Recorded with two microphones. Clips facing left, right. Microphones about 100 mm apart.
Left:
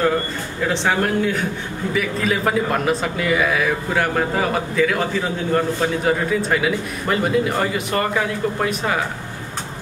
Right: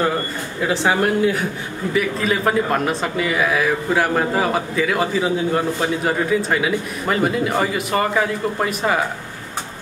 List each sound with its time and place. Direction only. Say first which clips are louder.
0.6 s a man's voice: right 1 dB; 5° right (ahead or behind)